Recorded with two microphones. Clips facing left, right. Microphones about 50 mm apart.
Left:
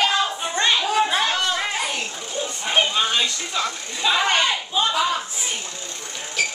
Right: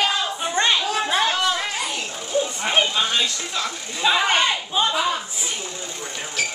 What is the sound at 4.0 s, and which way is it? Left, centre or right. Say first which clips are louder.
Speech: right 1 dB; centre.